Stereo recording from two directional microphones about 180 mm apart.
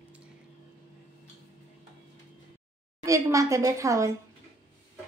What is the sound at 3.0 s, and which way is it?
A woman's voice, 15° right (ahead or behind).